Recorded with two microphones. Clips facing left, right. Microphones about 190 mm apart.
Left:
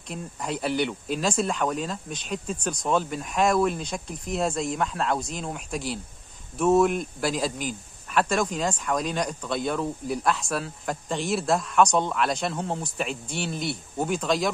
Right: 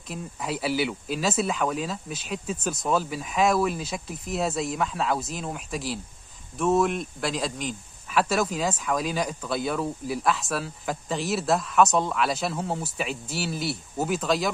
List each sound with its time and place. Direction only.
0.1 s speech: 5° right (ahead or behind)